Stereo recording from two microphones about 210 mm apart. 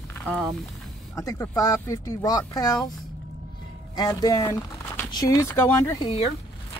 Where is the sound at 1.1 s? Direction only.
15° left (ahead or behind).